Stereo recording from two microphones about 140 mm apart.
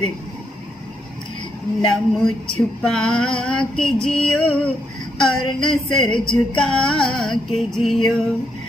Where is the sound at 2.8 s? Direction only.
5° left (ahead or behind).